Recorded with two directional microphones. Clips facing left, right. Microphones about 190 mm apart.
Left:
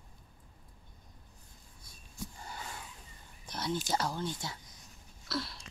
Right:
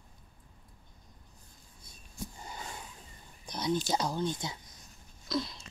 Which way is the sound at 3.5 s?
15° right (ahead or behind).